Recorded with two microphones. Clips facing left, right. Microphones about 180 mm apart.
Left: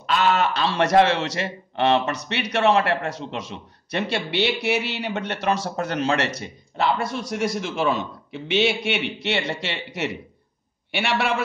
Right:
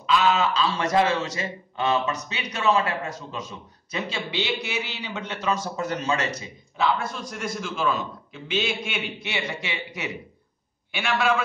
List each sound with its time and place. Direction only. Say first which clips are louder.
0.0 s a man's voice: left 1 dB; 65° left (ahead or behind)